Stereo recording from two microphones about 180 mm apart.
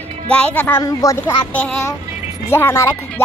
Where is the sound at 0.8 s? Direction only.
20° left (ahead or behind).